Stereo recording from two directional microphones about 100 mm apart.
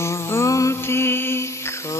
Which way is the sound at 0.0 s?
25° left (ahead or behind).